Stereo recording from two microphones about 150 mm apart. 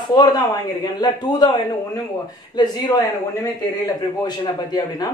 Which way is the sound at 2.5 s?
25° left (ahead or behind).